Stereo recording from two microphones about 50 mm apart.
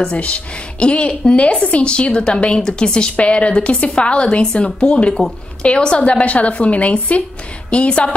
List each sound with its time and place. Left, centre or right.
0.0 s a woman's voice: left